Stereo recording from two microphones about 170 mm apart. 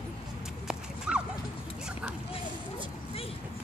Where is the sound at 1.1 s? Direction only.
10° right (ahead or behind).